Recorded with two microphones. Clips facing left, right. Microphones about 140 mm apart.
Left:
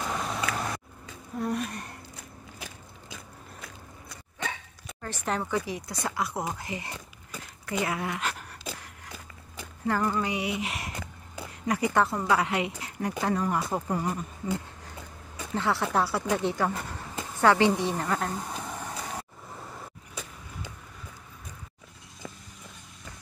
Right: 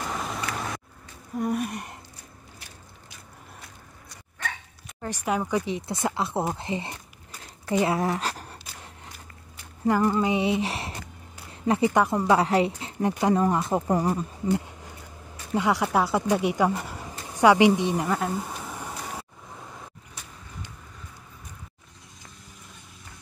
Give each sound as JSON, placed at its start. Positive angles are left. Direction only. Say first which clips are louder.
{"t": 0.0, "sound": "a sound", "louder": "even", "side_deg": 0}
{"t": 1.4, "sound": "gasp", "louder": "right 3 dB", "side_deg": -10}
{"t": 5.0, "sound": "speech", "louder": "right 4 dB", "side_deg": -10}
{"t": 5.7, "sound": "speech", "louder": "right 5 dB", "side_deg": -25}
{"t": 9.8, "sound": "speech", "louder": "right 5 dB", "side_deg": -15}
{"t": 11.9, "sound": "speech", "louder": "right 3 dB", "side_deg": -15}
{"t": 12.3, "sound": "speech", "louder": "right 5 dB", "side_deg": -35}
{"t": 13.8, "sound": "speech", "louder": "right 6 dB", "side_deg": -40}
{"t": 15.5, "sound": "speech", "louder": "right 4 dB", "side_deg": -15}
{"t": 17.3, "sound": "a sound", "louder": "right 4 dB", "side_deg": -15}